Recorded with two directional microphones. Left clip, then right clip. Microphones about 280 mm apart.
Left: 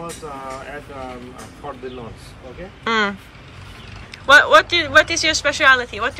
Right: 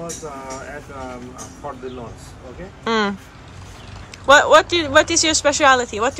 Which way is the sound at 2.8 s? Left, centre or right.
Centre.